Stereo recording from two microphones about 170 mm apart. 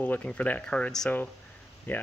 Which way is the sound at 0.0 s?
10° left (ahead or behind).